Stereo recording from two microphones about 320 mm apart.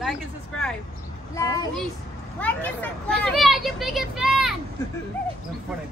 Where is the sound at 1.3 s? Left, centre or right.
Centre.